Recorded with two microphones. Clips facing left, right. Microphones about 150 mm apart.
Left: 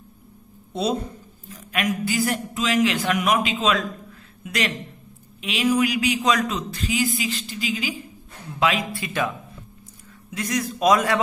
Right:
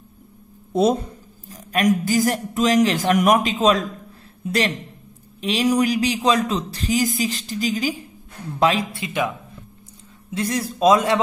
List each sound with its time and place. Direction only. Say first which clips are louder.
1.5 s a man's voice: right 6 dB; 40° right (ahead or behind)
8.9 s a man's voice: right 2 dB; 20° right (ahead or behind)
10.3 s a man's voice: right 2 dB; 30° right (ahead or behind)